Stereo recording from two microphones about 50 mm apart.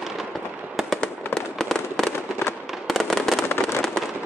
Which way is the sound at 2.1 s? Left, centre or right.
Left.